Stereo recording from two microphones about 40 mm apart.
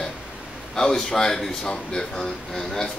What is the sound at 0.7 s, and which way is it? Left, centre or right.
Speech, centre.